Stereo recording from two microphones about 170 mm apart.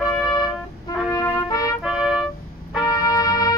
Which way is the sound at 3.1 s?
25° left (ahead or behind).